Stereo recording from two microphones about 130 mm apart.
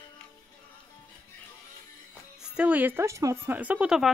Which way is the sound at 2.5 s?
10° right (ahead or behind).